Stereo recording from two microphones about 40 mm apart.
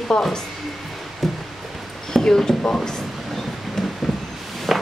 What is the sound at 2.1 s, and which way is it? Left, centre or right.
Speech, centre.